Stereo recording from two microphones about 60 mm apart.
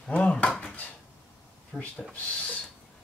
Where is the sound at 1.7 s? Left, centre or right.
Centre.